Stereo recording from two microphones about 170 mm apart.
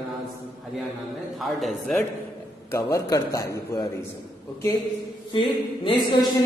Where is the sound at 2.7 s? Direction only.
20° left (ahead or behind).